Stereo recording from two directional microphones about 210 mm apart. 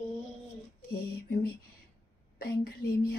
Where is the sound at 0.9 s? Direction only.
50° left (ahead or behind).